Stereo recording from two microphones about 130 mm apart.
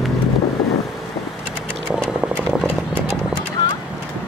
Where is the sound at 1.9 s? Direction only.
5° right (ahead or behind).